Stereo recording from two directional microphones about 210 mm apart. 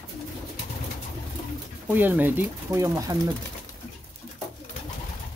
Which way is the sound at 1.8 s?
10° right (ahead or behind).